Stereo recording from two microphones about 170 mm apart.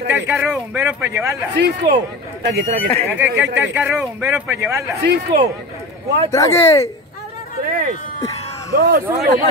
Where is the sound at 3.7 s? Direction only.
10° right (ahead or behind).